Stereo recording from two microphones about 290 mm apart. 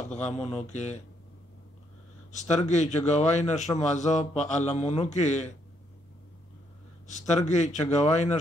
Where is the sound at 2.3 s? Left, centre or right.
Left.